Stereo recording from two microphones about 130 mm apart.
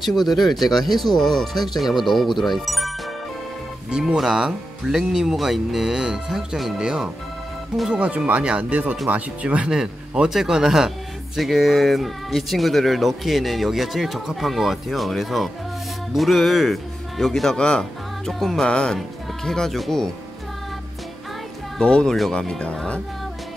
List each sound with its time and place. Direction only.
0.3 s speech: centre (ahead or behind)
1.5 s speech: 30° left (ahead or behind)
1.8 s speech: centre (ahead or behind)
3.9 s speech: 5° right (ahead or behind)
21.7 s speech: 5° left (ahead or behind)